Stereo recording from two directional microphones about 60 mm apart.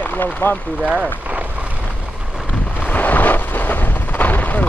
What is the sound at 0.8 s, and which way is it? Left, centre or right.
Speech, centre.